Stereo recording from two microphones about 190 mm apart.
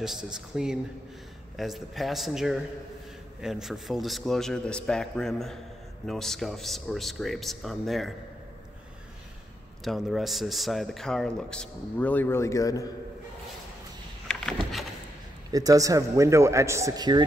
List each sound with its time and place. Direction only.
0.0 s speech: 5° right (ahead or behind)
9.8 s speech: centre (ahead or behind); by 12.8 s 15° left (ahead or behind)
14.2 s vehicle: 5° left (ahead or behind)
15.5 s a man's voice: 20° right (ahead or behind)